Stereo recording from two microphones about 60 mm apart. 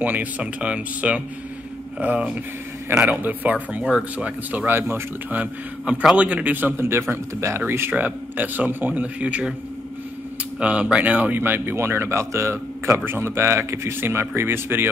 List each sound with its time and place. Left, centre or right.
0.0 s a man's voice: right
3.8 s speech: centre
4.6 s a man's voice: right
5.4 s a man's voice: right
7.9 s a man's voice: right
10.6 s a man's voice: right
11.4 s speech: right
13.0 s a man's voice: right